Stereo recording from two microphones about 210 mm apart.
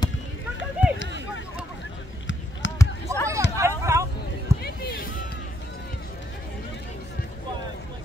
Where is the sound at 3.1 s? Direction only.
15° right (ahead or behind).